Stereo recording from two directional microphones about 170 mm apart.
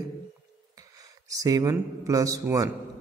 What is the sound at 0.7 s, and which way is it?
A man's voice, 20° right (ahead or behind).